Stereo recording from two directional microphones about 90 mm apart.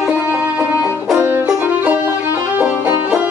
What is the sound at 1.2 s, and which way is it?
Music, 20° right (ahead or behind).